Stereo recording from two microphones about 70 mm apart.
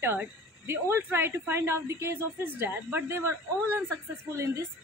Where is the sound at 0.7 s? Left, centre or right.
Right.